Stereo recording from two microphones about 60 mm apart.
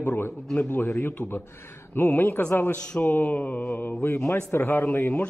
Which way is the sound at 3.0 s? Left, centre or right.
Left.